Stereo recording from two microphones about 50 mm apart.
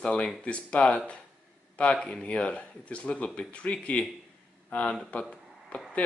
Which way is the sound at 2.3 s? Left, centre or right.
Left.